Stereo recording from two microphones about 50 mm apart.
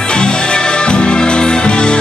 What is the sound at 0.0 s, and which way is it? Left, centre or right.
Music, centre.